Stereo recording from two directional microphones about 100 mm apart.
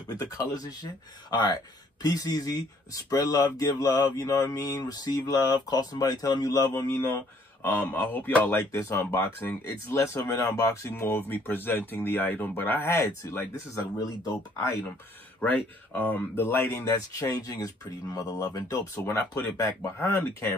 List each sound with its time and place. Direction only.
0.1 s speech: 40° left (ahead or behind)
6.9 s speech: 20° left (ahead or behind)
13.9 s speech: 40° left (ahead or behind)
15.4 s speech: 20° left (ahead or behind)
17.1 s speech: 35° left (ahead or behind)